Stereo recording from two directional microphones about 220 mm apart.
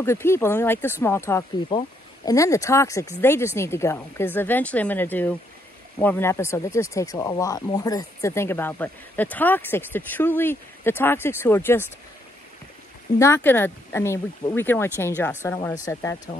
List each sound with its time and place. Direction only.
0.0 s speech: 10° left (ahead or behind)
13.2 s speech: 10° left (ahead or behind)